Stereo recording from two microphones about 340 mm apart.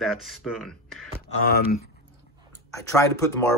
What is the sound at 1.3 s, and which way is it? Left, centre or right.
Speech, left.